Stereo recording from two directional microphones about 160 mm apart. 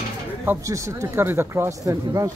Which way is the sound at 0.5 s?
20° right (ahead or behind).